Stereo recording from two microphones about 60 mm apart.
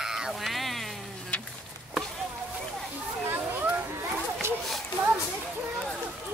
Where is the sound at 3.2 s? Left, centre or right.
Right.